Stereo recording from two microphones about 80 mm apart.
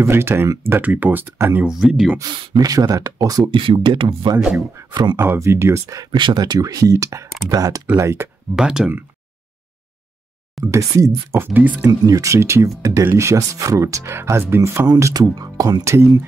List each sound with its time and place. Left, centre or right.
0.0 s speech: right
1.7 s speech: centre
2.2 s speech: right
2.5 s speech: right
3.5 s speech: right
4.4 s speech: centre
4.8 s speech: right
5.1 s speech: right
6.1 s speech: right
8.0 s speech: right
8.5 s speech: centre
10.6 s speech: right
11.3 s speech: right
11.9 s speech: right